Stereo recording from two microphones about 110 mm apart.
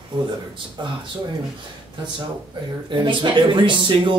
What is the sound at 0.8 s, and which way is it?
Speech, 40° right (ahead or behind).